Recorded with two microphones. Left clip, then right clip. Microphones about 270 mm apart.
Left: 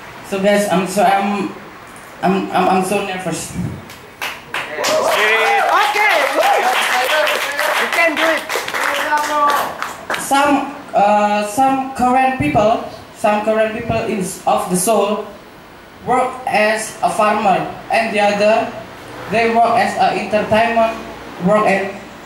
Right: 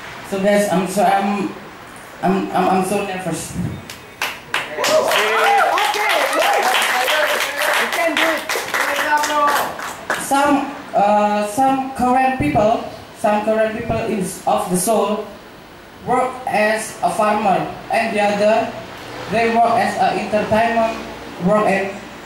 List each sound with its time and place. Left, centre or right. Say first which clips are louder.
0.4 s speech: left 1 dB; centre
2.5 s speech: left 2 dB; centre
4.2 s clapping: right 1 dB; centre
10.3 s speech: left 2 dB; centre
12.5 s speech: left 2 dB; left
13.2 s speech: left 2 dB; centre
14.6 s speech: left 2 dB; left
16.1 s speech: left 2 dB; centre